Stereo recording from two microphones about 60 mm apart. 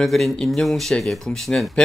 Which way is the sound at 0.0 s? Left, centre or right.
Centre.